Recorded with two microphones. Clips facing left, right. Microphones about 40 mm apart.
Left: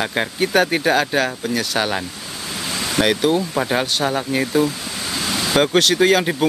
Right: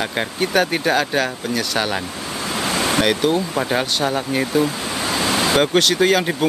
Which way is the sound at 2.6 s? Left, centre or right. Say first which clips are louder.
Right 5 dB; right.